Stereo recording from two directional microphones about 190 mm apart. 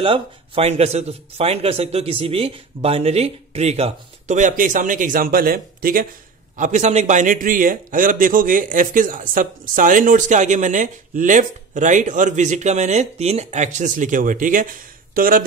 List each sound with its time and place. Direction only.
0.0 s a man's voice: 30° right (ahead or behind); by 15.4 s 45° right (ahead or behind)